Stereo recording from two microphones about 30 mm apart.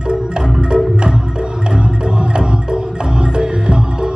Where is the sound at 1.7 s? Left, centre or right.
Right.